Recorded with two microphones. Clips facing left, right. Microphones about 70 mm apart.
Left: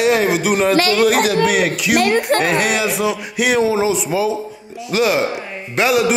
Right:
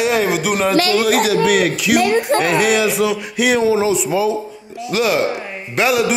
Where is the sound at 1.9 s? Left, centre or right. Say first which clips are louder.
Even; left.